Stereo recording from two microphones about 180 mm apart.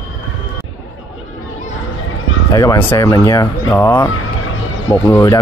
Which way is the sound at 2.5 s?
20° left (ahead or behind).